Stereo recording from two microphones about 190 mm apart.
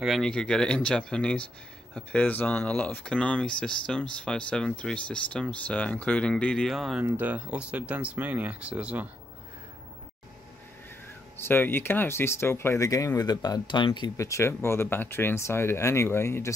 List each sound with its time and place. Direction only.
0.0 s speech: centre (ahead or behind)
11.3 s speech: 10° left (ahead or behind)